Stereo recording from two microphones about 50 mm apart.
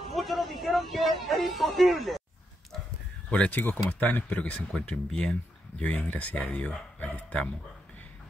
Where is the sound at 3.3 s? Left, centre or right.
Left.